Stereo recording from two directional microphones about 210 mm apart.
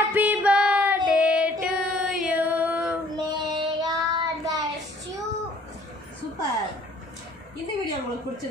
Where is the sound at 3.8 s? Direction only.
20° right (ahead or behind).